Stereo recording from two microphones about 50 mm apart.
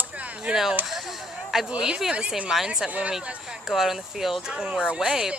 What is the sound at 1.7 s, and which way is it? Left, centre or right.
Speech, centre.